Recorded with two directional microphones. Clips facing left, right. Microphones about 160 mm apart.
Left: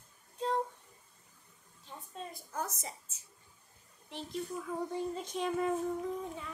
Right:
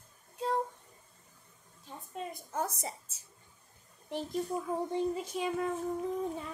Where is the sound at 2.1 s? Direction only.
10° right (ahead or behind).